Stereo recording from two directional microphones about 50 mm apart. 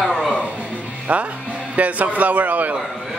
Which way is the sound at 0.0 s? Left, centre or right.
Centre.